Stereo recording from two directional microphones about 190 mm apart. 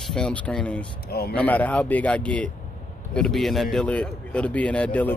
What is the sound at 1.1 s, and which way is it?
Speech, 55° left (ahead or behind).